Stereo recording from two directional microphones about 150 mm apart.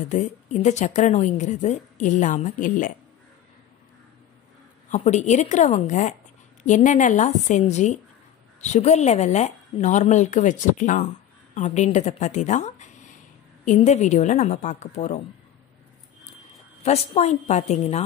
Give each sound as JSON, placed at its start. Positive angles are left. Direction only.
{"t": 0.0, "sound": "speech", "side_deg": 55}
{"t": 4.9, "sound": "speech", "side_deg": 50}
{"t": 16.8, "sound": "speech", "side_deg": 45}